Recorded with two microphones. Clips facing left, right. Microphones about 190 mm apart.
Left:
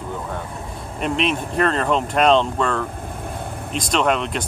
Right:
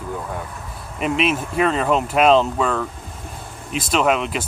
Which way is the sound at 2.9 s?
55° left (ahead or behind).